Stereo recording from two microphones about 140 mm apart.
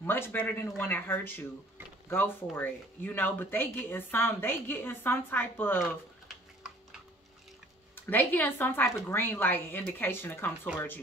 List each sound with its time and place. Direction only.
0.0 s speech: 15° left (ahead or behind)
7.9 s speech: 15° left (ahead or behind)